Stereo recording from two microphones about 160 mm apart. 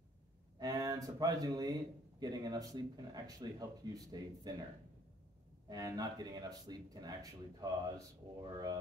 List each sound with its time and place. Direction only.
0.6 s speech: 25° right (ahead or behind)
5.7 s speech: 20° right (ahead or behind)